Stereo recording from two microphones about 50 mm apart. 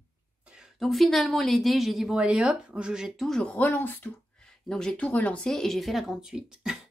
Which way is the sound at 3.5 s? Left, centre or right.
Left.